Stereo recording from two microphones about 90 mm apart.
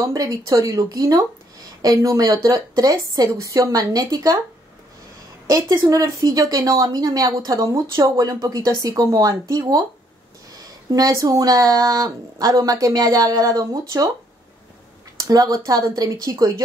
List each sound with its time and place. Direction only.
0.0 s a woman's voice: 40° right (ahead or behind)
5.5 s a woman's voice: 40° right (ahead or behind)
10.9 s speech: 40° right (ahead or behind)
15.1 s speech: 40° right (ahead or behind)